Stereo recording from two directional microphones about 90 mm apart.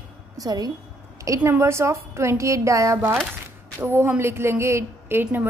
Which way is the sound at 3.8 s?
25° right (ahead or behind).